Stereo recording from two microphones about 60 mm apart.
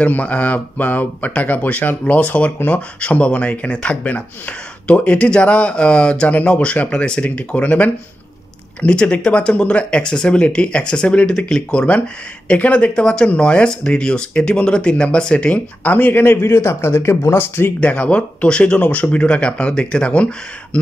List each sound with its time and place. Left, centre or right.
0.0 s speech: left
16.4 s speech: left
17.7 s speech: left